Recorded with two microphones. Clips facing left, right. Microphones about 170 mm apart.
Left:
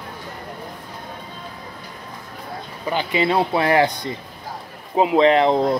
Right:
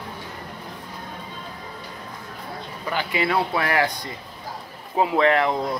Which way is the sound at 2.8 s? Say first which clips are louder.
Left 4 dB; 20° left (ahead or behind).